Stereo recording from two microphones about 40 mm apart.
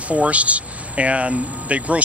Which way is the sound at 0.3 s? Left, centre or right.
Right.